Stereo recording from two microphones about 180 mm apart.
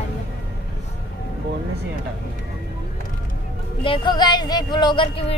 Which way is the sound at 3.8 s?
25° left (ahead or behind).